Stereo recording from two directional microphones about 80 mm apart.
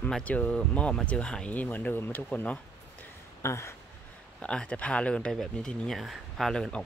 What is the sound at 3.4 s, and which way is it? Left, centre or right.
Speech, left.